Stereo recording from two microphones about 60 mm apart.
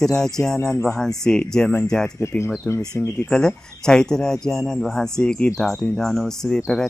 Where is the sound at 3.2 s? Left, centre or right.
Centre.